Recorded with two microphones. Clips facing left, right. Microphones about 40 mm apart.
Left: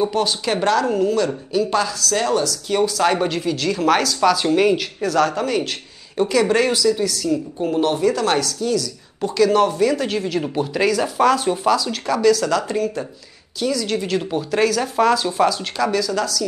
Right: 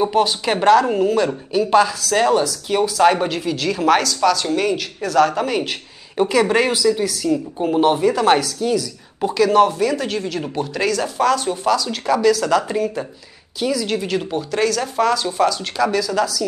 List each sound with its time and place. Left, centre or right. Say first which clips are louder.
0.0 s a woman's voice: right 3 dB; centre